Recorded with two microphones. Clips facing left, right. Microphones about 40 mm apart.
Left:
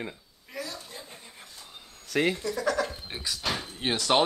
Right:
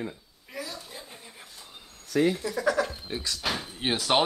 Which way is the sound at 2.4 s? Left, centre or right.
Centre.